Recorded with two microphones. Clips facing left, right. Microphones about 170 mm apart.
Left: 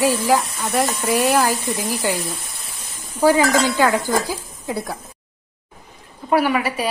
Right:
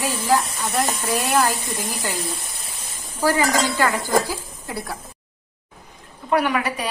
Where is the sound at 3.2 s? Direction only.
15° left (ahead or behind).